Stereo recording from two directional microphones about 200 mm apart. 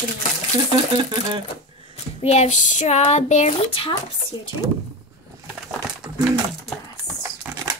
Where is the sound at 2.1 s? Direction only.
30° left (ahead or behind).